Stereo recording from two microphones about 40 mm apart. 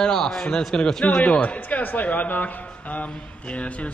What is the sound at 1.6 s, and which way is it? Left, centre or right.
A man's voice, left.